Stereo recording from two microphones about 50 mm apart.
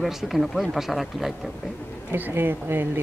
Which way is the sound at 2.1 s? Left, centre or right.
Right.